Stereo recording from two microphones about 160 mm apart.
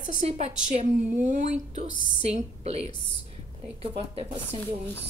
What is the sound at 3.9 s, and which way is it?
Speech, 40° right (ahead or behind).